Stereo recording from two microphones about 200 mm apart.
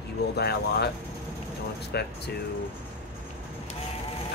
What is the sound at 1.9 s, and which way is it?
Speech, 55° left (ahead or behind).